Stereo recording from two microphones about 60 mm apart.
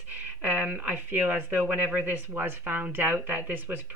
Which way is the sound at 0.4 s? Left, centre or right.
Right.